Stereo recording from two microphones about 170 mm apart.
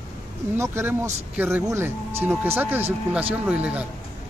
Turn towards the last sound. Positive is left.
turn(degrees=-10)  # may be behind; listen again after turning